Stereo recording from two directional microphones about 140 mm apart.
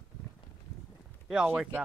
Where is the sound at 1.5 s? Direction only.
15° right (ahead or behind).